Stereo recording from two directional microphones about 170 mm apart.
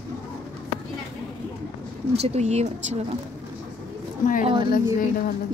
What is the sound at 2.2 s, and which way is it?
Speech, 40° right (ahead or behind).